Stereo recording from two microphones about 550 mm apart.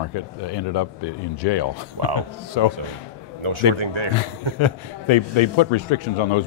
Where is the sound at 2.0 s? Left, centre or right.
Right.